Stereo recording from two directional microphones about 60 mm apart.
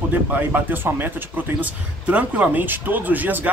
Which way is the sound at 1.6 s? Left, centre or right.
Right.